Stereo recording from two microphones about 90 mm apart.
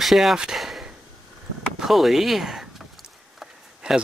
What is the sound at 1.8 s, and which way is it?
Speech, centre (ahead or behind).